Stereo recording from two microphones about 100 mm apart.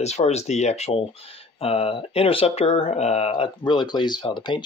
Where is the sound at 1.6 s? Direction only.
75° left (ahead or behind); by 3.3 s 90° left.